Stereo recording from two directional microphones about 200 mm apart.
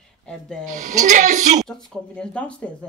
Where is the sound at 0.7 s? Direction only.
40° right (ahead or behind).